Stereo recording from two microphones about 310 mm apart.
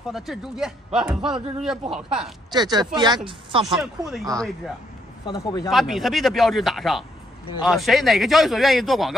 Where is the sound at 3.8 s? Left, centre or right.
Centre.